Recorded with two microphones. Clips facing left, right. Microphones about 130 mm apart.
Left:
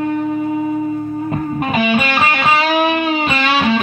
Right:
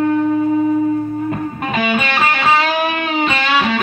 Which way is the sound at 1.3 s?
20° left (ahead or behind).